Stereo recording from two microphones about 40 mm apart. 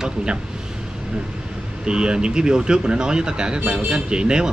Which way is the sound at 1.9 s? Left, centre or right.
Right.